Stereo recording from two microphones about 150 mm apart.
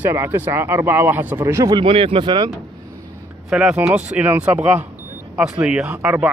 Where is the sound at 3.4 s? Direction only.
5° right (ahead or behind).